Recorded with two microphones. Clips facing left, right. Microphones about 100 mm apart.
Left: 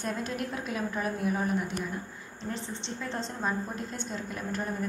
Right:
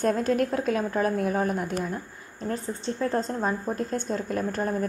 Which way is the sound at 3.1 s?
40° right (ahead or behind).